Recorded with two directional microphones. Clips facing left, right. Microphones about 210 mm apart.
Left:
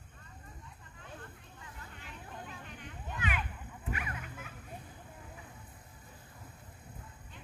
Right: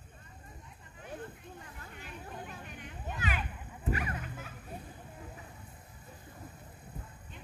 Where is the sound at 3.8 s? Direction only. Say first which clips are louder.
Right 6 dB; 35° right (ahead or behind).